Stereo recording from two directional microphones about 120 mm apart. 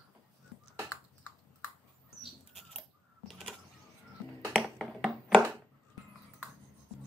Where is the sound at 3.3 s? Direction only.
Centre (ahead or behind).